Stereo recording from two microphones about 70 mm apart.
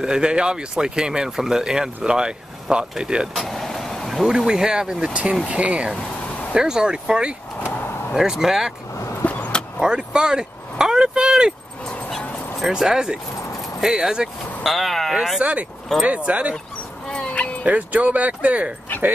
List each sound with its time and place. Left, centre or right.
0.0 s speech: centre
3.3 s vehicle: centre
4.3 s speech: centre
8.9 s a sound: left
9.2 s vehicle: left
9.8 s speech: centre
11.8 s a sound: centre
12.5 s speech: centre
16.0 s speech: centre
17.1 s dog: centre
17.6 s speech: right